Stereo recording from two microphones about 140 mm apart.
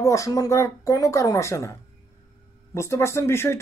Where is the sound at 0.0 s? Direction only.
20° left (ahead or behind).